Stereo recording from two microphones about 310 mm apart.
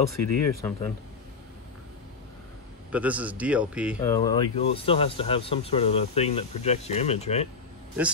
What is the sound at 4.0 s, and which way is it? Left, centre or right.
Speech, centre.